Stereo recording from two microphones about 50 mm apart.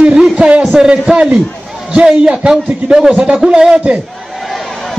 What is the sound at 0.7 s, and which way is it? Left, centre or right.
A man's voice, centre.